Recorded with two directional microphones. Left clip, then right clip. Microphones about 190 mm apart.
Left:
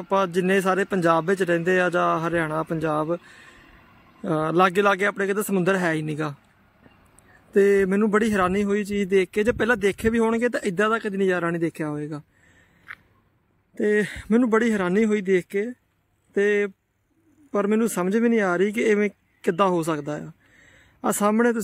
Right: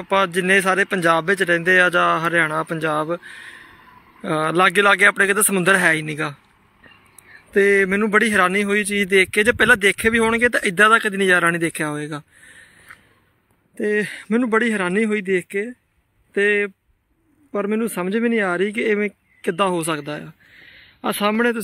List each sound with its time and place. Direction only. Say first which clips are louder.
0.0 s a man's voice: right 4 dB; 15° left (ahead or behind)
7.5 s a man's voice: right 3 dB; 20° left (ahead or behind)
13.7 s a man's voice: right 1 dB; 10° left (ahead or behind)